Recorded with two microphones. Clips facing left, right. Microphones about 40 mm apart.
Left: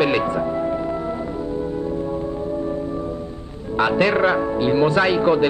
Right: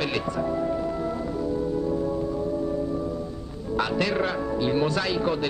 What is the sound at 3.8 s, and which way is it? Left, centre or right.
Speech, left.